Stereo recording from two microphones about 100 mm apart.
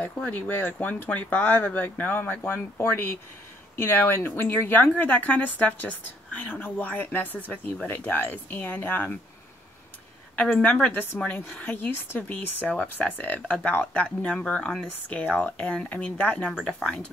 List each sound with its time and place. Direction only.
0.0 s speech: 15° left (ahead or behind)
10.3 s speech: 10° left (ahead or behind)